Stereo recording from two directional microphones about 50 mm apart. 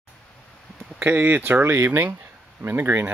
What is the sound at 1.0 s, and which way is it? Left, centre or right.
Speech, right.